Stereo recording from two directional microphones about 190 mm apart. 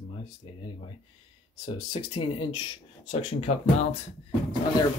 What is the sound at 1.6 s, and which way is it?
Speech, 25° left (ahead or behind).